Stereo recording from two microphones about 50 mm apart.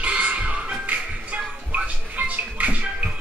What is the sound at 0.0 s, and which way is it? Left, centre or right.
Music, right.